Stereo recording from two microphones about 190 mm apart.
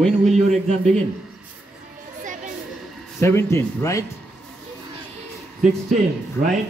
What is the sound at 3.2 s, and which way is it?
Speech, 15° left (ahead or behind).